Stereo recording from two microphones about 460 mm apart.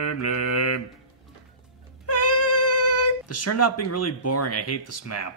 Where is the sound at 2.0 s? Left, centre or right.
Left.